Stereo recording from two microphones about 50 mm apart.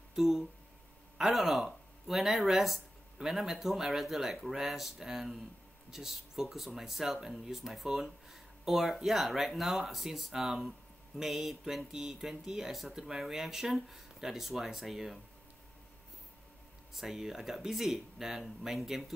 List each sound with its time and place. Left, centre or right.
0.1 s speech: centre
16.9 s speech: centre